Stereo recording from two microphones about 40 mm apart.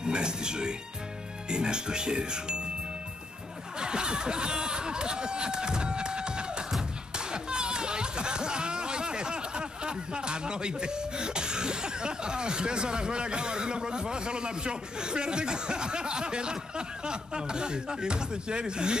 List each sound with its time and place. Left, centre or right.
0.0 s speech: right
3.8 s speech: right